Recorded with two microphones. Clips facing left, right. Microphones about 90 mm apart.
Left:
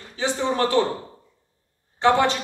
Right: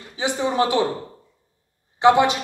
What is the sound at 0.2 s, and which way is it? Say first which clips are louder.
Speech: right 1 dB; 15° right (ahead or behind).